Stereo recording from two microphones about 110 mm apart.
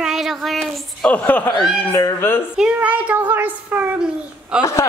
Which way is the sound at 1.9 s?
25° left (ahead or behind).